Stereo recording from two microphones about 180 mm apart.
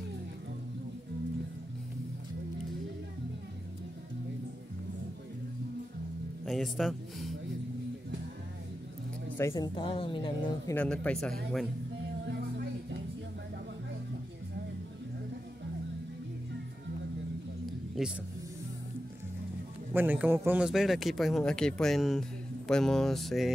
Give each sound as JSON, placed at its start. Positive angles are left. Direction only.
{"t": 6.4, "sound": "a man's voice", "side_deg": 0}
{"t": 9.4, "sound": "speech", "side_deg": 15}
{"t": 9.8, "sound": "speech", "side_deg": 30}
{"t": 10.7, "sound": "a man's voice", "side_deg": 10}
{"t": 18.0, "sound": "speech", "side_deg": 0}
{"t": 19.9, "sound": "a man's voice", "side_deg": -10}